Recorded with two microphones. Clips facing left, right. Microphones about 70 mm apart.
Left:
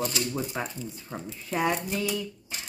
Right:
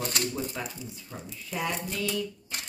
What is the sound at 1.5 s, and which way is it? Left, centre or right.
Speech, left.